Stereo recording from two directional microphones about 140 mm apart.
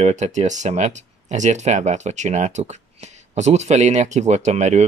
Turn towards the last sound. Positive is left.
turn(degrees=-55)  # may be behind; listen again after turning